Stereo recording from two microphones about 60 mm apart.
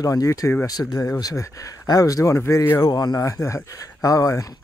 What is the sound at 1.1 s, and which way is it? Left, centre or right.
Speech, left.